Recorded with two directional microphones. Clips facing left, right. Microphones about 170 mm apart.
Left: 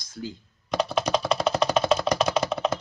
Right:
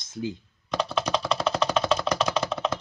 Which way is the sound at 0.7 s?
10° left (ahead or behind).